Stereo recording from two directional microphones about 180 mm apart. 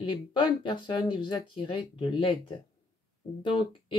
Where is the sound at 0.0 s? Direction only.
25° left (ahead or behind).